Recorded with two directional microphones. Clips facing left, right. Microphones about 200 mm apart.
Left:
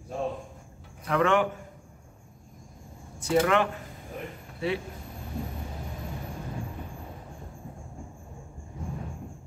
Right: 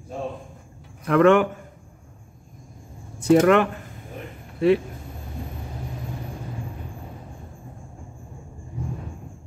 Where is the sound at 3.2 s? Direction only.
55° right (ahead or behind).